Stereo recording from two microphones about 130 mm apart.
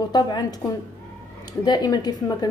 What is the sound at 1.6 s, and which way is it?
Speech, 30° left (ahead or behind).